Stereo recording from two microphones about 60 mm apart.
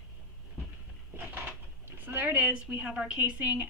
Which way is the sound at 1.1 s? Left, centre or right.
Right.